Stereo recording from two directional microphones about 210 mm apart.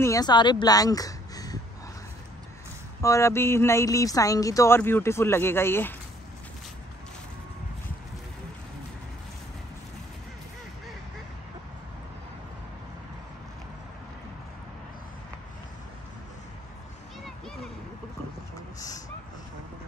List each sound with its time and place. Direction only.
0.0 s speech: 15° left (ahead or behind)
3.0 s speech: 15° left (ahead or behind)